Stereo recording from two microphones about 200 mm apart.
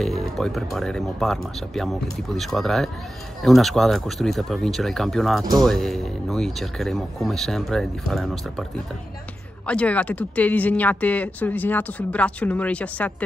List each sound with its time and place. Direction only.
0.0 s speech: centre (ahead or behind)
9.7 s speech: 5° left (ahead or behind)